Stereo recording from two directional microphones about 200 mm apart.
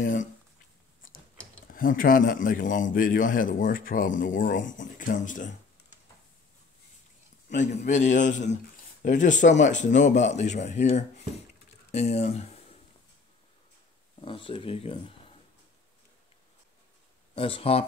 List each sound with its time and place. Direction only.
0.0 s speech: 40° left (ahead or behind)
1.0 s mechanisms: 45° left (ahead or behind)
1.7 s speech: 45° left (ahead or behind)
7.4 s speech: 35° left (ahead or behind)
14.2 s speech: 25° left (ahead or behind)
17.4 s speech: 30° left (ahead or behind)